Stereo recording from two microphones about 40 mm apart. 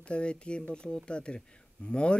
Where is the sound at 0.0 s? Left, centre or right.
Left.